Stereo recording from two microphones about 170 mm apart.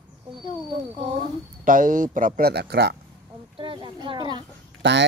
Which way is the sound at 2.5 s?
75° right (ahead or behind).